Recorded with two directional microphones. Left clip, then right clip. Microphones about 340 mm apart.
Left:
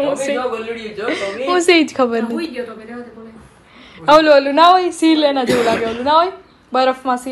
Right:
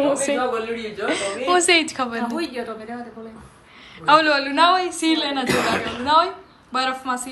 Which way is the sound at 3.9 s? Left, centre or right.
Centre.